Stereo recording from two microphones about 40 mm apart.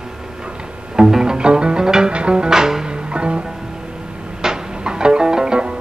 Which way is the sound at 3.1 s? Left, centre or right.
Right.